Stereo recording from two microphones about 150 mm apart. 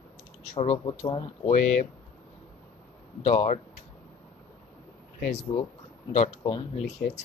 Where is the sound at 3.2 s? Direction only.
50° left (ahead or behind).